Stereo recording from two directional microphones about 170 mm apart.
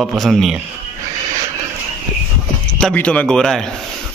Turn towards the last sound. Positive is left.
turn(degrees=5)  # may be behind; listen again after turning